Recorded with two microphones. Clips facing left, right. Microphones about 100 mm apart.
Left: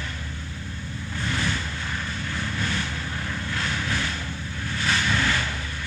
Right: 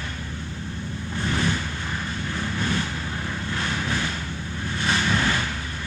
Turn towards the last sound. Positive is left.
turn(degrees=-20)  # may be behind; listen again after turning